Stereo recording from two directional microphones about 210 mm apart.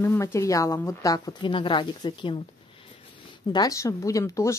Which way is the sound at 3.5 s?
15° left (ahead or behind).